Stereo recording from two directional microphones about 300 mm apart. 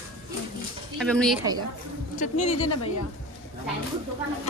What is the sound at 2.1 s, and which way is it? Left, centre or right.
Speech, left.